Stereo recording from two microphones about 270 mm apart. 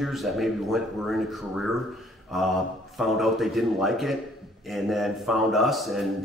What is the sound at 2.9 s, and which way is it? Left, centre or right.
Speech, centre.